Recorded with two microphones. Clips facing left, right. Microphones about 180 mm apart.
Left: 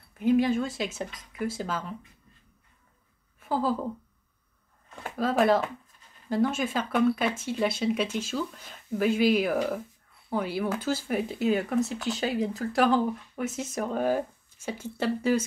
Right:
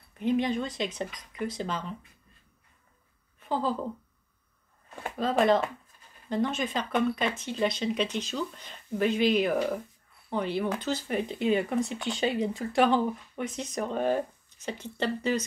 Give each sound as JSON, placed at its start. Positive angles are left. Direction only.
{"t": 0.2, "sound": "speech", "side_deg": 5}
{"t": 3.3, "sound": "a woman's voice", "side_deg": 5}
{"t": 4.8, "sound": "speech", "side_deg": -5}